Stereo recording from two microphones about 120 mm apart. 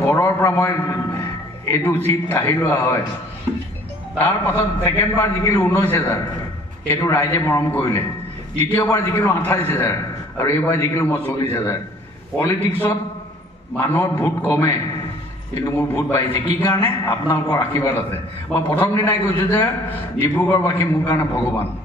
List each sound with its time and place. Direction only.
0.0 s a man's voice: 25° left (ahead or behind)
4.2 s a man's voice: 15° left (ahead or behind)
15.9 s a man's voice: 15° left (ahead or behind)